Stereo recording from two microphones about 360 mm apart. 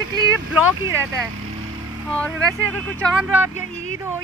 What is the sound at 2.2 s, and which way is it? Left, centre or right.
Speech, centre.